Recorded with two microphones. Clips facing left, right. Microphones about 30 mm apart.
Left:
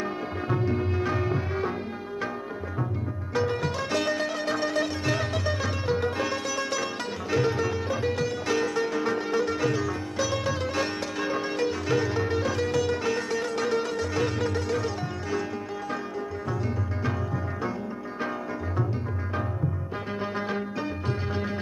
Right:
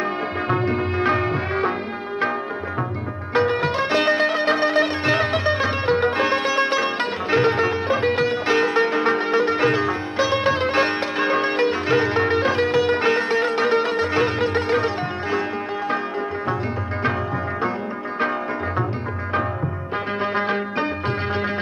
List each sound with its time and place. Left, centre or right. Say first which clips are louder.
0.0 s music: right 7 dB; right
3.3 s music: right 8 dB; right
20.2 s music: right 7 dB; right